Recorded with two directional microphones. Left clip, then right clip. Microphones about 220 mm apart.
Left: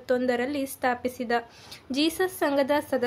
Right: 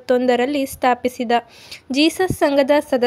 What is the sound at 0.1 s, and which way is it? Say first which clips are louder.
A woman's voice: right 9 dB; 35° right (ahead or behind).